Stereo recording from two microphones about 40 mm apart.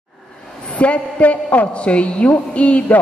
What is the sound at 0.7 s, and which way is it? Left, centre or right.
A woman's voice, left.